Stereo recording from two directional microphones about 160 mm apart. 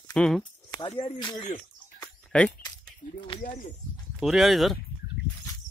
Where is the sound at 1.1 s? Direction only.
25° left (ahead or behind).